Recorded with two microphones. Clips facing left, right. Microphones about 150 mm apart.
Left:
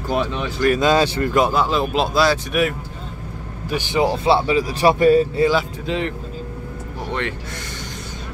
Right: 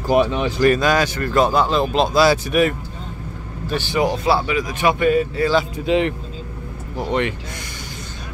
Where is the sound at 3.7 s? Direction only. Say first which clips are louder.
Left 1 dB; 20° left (ahead or behind).